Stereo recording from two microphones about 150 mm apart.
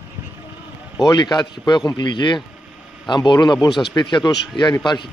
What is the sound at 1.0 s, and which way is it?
Speech, 30° left (ahead or behind).